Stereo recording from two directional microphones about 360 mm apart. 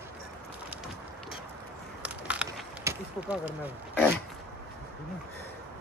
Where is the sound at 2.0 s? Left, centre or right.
Centre.